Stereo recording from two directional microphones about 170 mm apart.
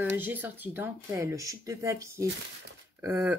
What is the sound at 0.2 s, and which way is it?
Speech, 10° right (ahead or behind).